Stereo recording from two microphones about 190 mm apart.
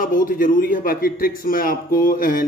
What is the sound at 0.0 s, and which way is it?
A man's voice, 45° left (ahead or behind).